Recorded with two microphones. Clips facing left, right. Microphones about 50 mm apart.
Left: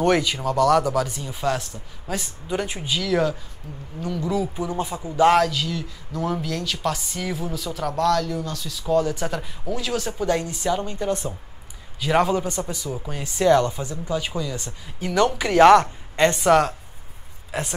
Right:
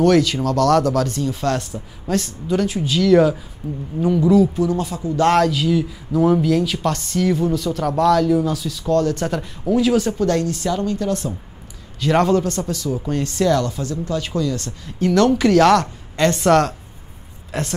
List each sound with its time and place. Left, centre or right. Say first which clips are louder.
0.0 s speech: right 5 dB; centre
2.1 s speech: right 7 dB; centre
2.9 s a man's voice: right 8 dB; centre
3.6 s speech: right 11 dB; centre
4.6 s a man's voice: right 6 dB; centre
10.1 s speech: right 4 dB; centre
12.0 s speech: right 4 dB; centre
15.6 s a woman's voice: left 2 dB; left
16.3 s speech: right 2 dB; centre